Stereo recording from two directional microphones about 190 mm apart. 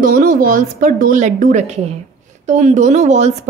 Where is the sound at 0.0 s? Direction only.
45° right (ahead or behind).